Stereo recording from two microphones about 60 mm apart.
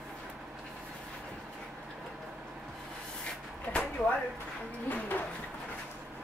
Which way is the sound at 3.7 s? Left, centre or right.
Left.